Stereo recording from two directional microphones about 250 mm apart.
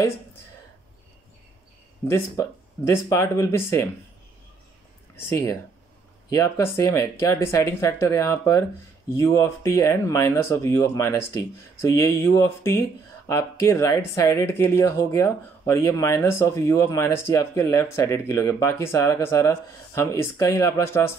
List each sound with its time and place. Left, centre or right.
2.0 s speech: centre
6.3 s speech: centre